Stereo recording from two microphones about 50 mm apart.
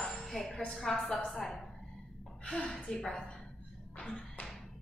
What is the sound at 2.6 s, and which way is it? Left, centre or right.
Speech, left.